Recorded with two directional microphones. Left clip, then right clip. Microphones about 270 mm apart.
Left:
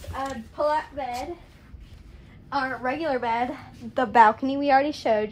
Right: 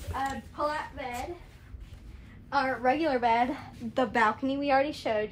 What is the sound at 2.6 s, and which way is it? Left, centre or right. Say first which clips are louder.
A woman's voice: right 2 dB; centre.